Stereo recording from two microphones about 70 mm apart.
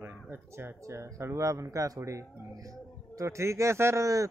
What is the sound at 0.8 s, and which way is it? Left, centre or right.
A man's voice, right.